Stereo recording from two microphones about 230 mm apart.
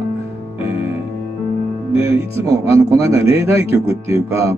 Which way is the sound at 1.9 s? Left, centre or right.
Centre.